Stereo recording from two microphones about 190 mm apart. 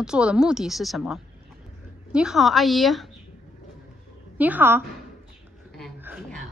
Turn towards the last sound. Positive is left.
turn(degrees=-10)  # may be behind; listen again after turning